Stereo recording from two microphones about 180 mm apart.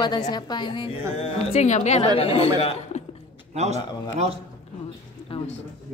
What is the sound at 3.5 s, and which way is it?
Speech, 40° right (ahead or behind).